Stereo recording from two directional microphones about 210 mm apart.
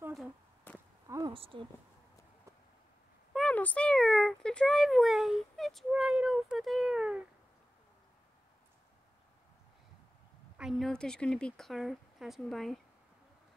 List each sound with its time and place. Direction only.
1.0 s a sound: 15° right (ahead or behind)
1.3 s speech: 25° right (ahead or behind)
3.3 s speech: 5° left (ahead or behind)
10.6 s speech: centre (ahead or behind)